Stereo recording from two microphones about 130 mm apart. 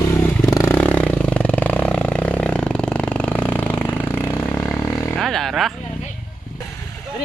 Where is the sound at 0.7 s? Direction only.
10° left (ahead or behind).